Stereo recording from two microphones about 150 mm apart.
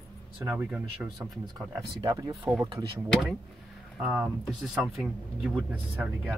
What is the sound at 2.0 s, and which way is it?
Speech, 30° right (ahead or behind).